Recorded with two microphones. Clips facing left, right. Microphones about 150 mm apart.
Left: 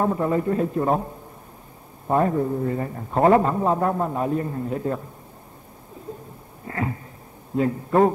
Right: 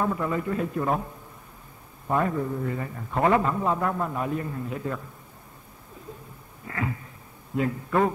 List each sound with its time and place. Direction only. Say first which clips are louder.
0.0 s a man's voice: left 5 dB; 35° left (ahead or behind)
6.7 s a man's voice: left 3 dB; 35° left (ahead or behind)